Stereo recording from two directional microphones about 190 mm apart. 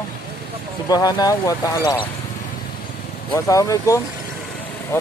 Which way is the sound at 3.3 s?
15° left (ahead or behind).